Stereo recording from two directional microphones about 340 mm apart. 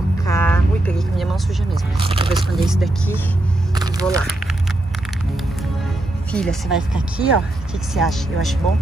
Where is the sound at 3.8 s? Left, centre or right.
Centre.